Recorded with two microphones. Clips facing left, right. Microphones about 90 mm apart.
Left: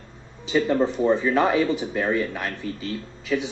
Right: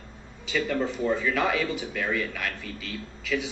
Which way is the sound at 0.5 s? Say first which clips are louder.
Left 6 dB; 35° left (ahead or behind).